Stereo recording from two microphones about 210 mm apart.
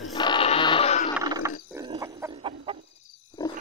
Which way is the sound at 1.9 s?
20° right (ahead or behind).